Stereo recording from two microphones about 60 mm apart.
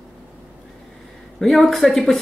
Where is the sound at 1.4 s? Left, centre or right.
Centre.